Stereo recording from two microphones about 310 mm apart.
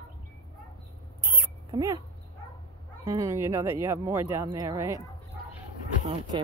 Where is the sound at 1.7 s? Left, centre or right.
Centre.